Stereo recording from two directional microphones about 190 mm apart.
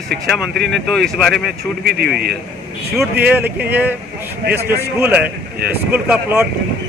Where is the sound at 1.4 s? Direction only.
55° right (ahead or behind).